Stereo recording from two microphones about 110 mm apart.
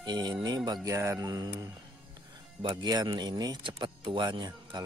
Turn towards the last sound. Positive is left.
turn(degrees=-40)  # may be behind; listen again after turning